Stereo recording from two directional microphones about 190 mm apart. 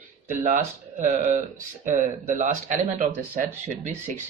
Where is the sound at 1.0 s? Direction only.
40° right (ahead or behind).